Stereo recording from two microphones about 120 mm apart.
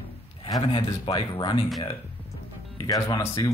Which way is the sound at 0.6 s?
40° left (ahead or behind).